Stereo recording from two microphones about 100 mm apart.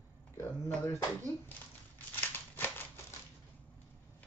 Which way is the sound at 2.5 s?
25° left (ahead or behind).